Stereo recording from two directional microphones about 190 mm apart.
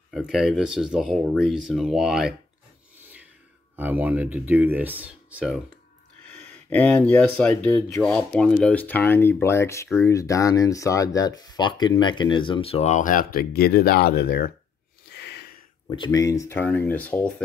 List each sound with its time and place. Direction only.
0.1 s speech: centre (ahead or behind)
3.7 s speech: 10° right (ahead or behind)
6.4 s speech: 5° left (ahead or behind); by 14.5 s 55° left (ahead or behind)
15.0 s a sound: 60° left (ahead or behind)
15.9 s speech: 20° left (ahead or behind)